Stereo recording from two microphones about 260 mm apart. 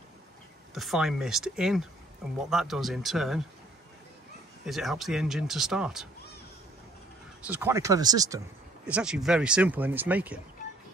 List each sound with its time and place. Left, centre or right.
0.7 s speech: centre
4.6 s speech: centre
7.4 s speech: centre
8.8 s speech: centre